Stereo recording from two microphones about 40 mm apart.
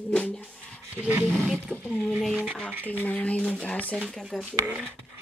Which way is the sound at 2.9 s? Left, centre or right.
Left.